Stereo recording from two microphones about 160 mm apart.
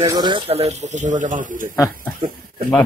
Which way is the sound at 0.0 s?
25° right (ahead or behind).